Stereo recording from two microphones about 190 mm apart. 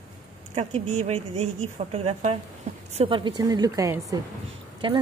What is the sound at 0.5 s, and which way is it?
A woman's voice, 35° right (ahead or behind).